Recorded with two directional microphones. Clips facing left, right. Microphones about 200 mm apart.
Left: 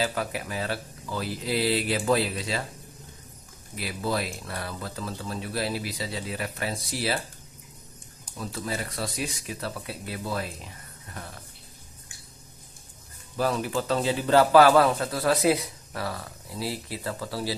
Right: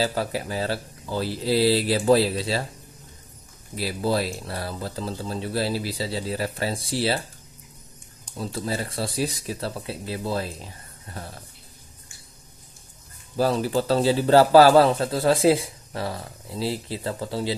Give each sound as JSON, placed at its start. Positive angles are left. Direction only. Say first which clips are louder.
{"t": 0.0, "sound": "speech", "louder": "right 4 dB", "side_deg": -30}
{"t": 3.7, "sound": "speech", "louder": "right 5 dB", "side_deg": -30}
{"t": 8.4, "sound": "a man's voice", "louder": "right 4 dB", "side_deg": -30}
{"t": 13.4, "sound": "a man's voice", "louder": "right 4 dB", "side_deg": -30}